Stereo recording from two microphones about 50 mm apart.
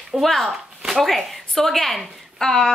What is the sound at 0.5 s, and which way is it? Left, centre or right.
A woman's voice, centre.